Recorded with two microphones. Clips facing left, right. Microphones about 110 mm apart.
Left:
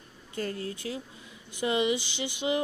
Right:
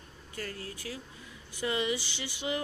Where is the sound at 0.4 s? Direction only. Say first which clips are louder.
Left 7 dB; 25° left (ahead or behind).